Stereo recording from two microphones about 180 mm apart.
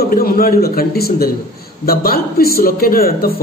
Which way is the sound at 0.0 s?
55° left (ahead or behind).